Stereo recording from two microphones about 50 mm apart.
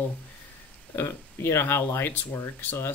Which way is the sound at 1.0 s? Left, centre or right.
Left.